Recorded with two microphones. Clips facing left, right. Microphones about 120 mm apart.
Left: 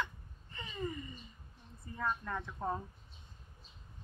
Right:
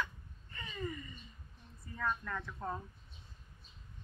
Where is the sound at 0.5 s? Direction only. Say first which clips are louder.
Left 1 dB; 25° left (ahead or behind).